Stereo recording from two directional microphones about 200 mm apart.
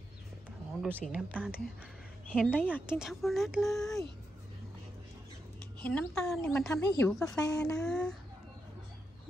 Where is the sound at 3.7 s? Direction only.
15° left (ahead or behind).